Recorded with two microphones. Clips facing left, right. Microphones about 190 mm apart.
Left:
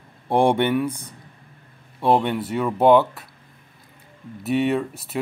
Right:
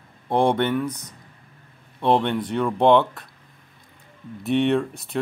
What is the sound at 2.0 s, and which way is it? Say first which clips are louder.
Speech: left 1 dB; 5° left (ahead or behind).